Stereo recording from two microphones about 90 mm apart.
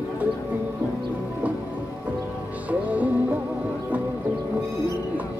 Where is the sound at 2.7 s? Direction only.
15° right (ahead or behind).